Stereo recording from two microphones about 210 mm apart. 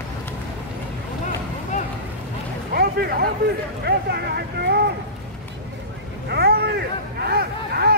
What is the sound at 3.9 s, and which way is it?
Speech, 50° right (ahead or behind).